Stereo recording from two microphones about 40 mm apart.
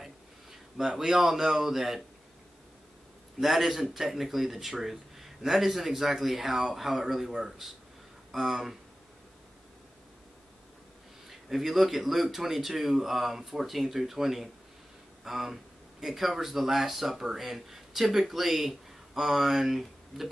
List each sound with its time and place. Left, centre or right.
0.0 s speech: centre
3.3 s speech: centre
11.2 s speech: centre